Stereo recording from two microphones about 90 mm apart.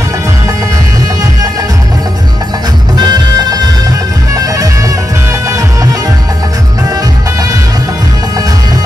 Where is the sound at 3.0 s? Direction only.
45° right (ahead or behind).